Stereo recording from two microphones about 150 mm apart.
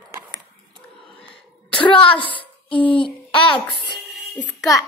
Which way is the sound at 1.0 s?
5° left (ahead or behind).